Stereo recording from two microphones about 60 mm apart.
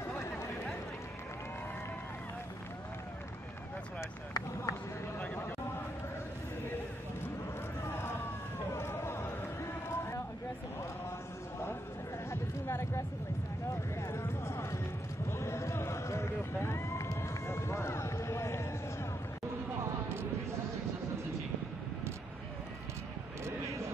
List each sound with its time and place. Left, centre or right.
4.3 s vehicle: left
8.7 s a sound: left
12.3 s chatter: left
14.0 s music: left
15.3 s run: left